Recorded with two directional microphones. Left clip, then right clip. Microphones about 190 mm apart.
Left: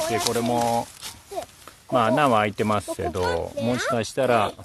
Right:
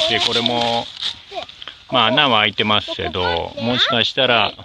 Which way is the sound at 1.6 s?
5° left (ahead or behind).